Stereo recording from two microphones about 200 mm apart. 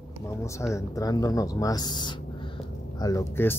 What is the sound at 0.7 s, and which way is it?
Speech, 15° left (ahead or behind).